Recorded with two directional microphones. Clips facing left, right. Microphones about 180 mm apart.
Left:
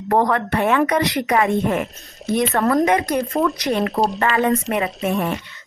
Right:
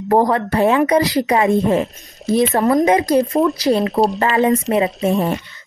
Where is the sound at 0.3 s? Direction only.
30° right (ahead or behind).